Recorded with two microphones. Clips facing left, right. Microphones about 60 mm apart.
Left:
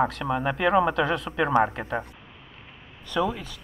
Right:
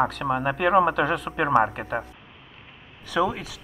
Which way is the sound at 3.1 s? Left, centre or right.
Centre.